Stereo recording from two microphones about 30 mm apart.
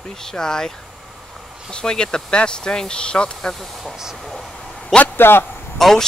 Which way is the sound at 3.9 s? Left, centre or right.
Centre.